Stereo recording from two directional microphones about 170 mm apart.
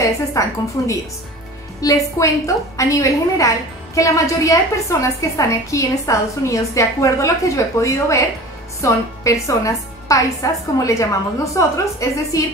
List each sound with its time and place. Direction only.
0.0 s a woman's voice: 20° left (ahead or behind)